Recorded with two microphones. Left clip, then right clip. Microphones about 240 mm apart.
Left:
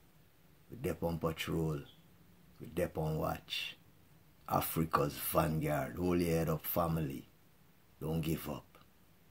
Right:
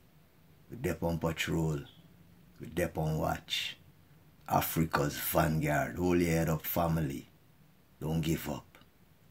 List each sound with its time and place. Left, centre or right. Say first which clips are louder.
0.7 s speech: right 3 dB; centre